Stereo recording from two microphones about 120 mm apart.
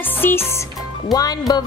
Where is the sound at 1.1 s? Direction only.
30° left (ahead or behind).